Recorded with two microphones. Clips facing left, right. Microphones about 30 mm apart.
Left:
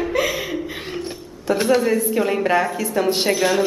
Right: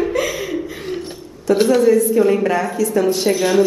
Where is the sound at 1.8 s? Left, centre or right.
Left.